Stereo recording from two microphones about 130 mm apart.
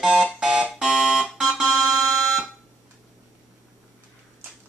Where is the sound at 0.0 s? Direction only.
5° right (ahead or behind).